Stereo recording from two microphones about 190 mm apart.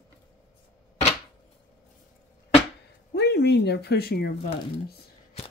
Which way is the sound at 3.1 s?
60° left (ahead or behind).